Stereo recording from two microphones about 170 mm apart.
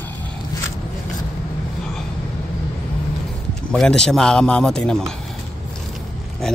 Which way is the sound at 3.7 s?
5° left (ahead or behind).